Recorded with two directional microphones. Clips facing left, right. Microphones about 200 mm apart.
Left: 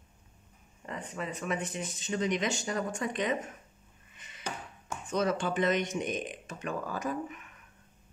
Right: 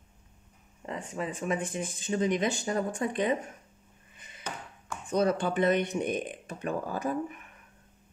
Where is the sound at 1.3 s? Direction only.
50° right (ahead or behind).